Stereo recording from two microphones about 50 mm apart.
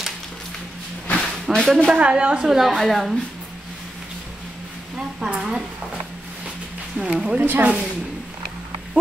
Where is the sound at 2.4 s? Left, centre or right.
Centre.